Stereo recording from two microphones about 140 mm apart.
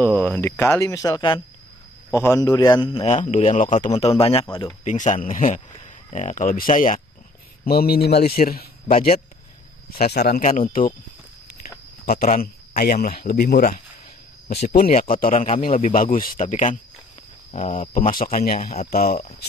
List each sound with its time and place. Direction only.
0.0 s a man's voice: 10° left (ahead or behind); by 1.4 s 35° left (ahead or behind)
2.0 s a man's voice: 20° left (ahead or behind); by 3.2 s 45° left (ahead or behind)
3.2 s speech: 55° left (ahead or behind)
3.9 s a man's voice: 45° left (ahead or behind)
4.8 s speech: 60° left (ahead or behind)
6.0 s speech: 60° left (ahead or behind)
7.6 s speech: 90° left
10.5 s speech: 90° left
12.1 s speech: 90° left
15.1 s speech: 75° left (ahead or behind); by 15.7 s 60° left (ahead or behind)
15.8 s speech: 75° left (ahead or behind)
18.2 s speech: 85° left